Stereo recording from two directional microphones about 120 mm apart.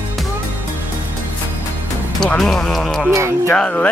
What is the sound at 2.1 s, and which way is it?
Speech, 5° left (ahead or behind).